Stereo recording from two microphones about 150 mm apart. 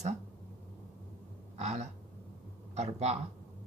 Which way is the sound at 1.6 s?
50° right (ahead or behind).